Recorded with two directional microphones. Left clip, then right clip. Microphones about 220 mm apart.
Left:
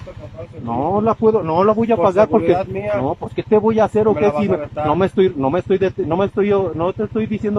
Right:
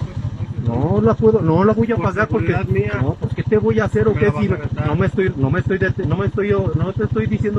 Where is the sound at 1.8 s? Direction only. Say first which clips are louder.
Left 6 dB; 15° left (ahead or behind).